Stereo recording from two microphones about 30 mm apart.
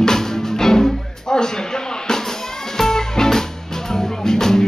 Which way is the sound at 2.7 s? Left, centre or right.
Centre.